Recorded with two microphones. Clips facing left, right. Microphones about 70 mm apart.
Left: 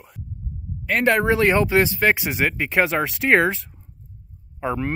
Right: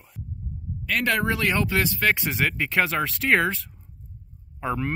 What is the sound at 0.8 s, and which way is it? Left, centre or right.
Speech, left.